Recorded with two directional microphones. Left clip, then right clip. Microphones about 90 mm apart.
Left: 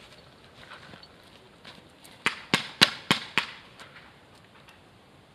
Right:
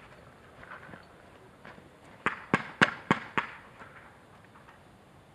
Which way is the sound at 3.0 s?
40° left (ahead or behind).